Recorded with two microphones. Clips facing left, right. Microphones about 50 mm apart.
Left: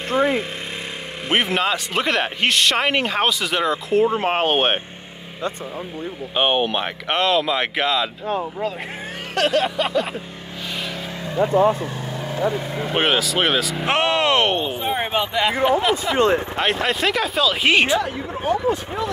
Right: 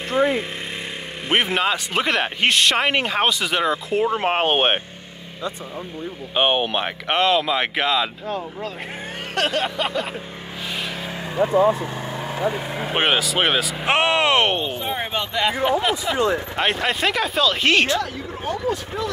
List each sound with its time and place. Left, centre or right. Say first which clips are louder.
0.1 s a sound: even; centre
1.3 s speech: even; centre
6.3 s speech: even; centre
9.3 s speech: left 3 dB; centre
12.7 s speech: even; centre
14.8 s speech: left 3 dB; centre
16.2 s speech: left 4 dB; left
16.5 s speech: left 1 dB; centre